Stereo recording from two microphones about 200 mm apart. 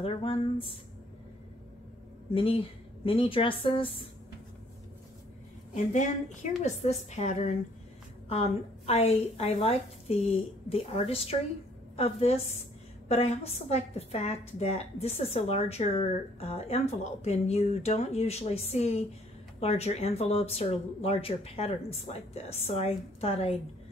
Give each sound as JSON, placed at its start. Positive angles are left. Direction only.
{"t": 0.0, "sound": "a woman's voice", "side_deg": 30}
{"t": 2.3, "sound": "a woman's voice", "side_deg": 25}
{"t": 5.8, "sound": "a woman's voice", "side_deg": 35}